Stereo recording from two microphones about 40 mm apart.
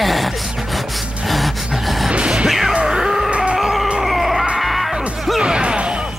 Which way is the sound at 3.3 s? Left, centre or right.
Right.